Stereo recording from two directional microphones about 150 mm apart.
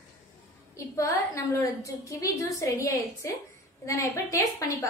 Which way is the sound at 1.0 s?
20° left (ahead or behind).